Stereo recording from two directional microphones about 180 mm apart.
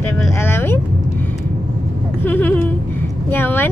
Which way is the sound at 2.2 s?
10° left (ahead or behind).